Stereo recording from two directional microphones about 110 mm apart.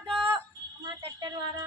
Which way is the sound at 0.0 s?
45° right (ahead or behind).